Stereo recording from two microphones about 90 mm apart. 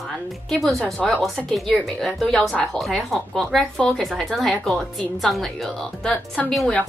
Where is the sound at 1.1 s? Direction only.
5° left (ahead or behind).